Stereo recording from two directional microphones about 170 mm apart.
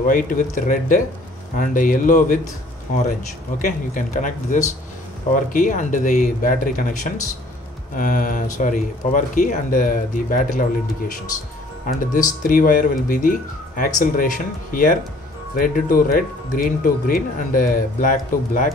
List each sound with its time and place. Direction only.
0.0 s speech: 55° left (ahead or behind)
3.5 s speech: 50° left (ahead or behind)
11.8 s speech: 55° left (ahead or behind)